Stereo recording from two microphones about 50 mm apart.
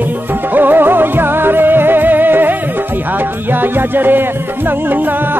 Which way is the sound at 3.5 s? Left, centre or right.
Right.